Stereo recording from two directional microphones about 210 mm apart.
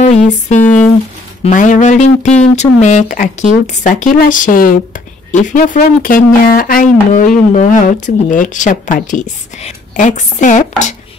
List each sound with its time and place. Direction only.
0.1 s speech: 35° left (ahead or behind)